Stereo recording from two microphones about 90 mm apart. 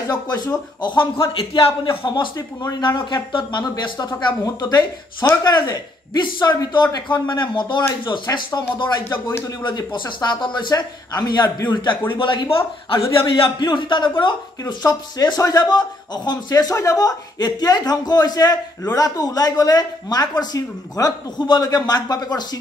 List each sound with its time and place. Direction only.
0.1 s speech: 50° left (ahead or behind)
0.8 s a man's voice: 75° left (ahead or behind)
2.0 s speech: 45° left (ahead or behind)
3.1 s a man's voice: 60° left (ahead or behind); by 5.6 s 45° left (ahead or behind)
5.7 s a man's voice: 55° left (ahead or behind)
14.7 s speech: 45° left (ahead or behind)